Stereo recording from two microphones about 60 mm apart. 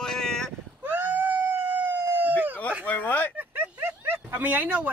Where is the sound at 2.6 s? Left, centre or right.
Left.